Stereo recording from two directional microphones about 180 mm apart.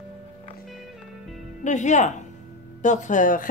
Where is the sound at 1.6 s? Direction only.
40° left (ahead or behind).